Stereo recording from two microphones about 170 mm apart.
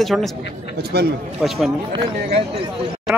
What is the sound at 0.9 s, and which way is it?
Speech, 70° right (ahead or behind).